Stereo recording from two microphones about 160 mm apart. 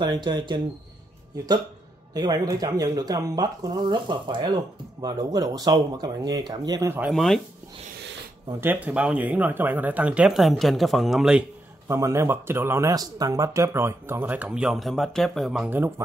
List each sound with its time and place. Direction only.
0.0 s speech: 25° right (ahead or behind)
6.9 s speech: 5° right (ahead or behind)
8.5 s speech: 10° right (ahead or behind)
11.9 s speech: 20° right (ahead or behind)